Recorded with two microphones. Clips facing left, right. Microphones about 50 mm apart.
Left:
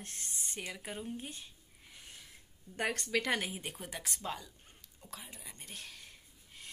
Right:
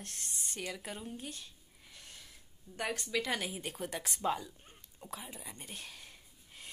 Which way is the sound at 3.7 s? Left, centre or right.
Centre.